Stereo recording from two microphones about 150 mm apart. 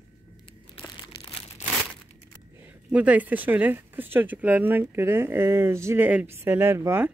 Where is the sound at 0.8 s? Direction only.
40° left (ahead or behind).